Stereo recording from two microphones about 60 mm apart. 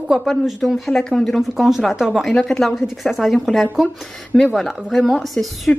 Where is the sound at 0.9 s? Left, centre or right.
Centre.